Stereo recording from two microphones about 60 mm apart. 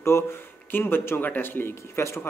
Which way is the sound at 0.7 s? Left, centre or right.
Left.